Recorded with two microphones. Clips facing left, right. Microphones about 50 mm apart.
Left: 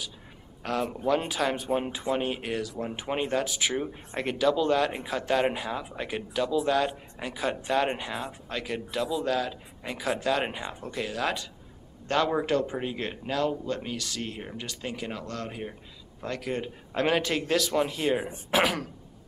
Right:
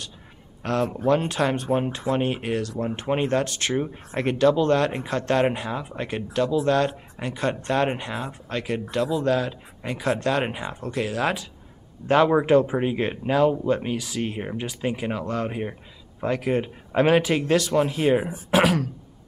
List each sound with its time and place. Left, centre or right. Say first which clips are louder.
0.6 s speech: right 5 dB; centre
3.8 s speech: right 5 dB; centre
12.1 s speech: right 8 dB; centre